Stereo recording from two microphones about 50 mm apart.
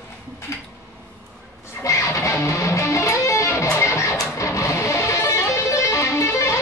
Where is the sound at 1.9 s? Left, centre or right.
Left.